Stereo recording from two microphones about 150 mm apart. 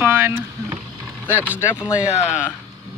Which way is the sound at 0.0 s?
15° right (ahead or behind).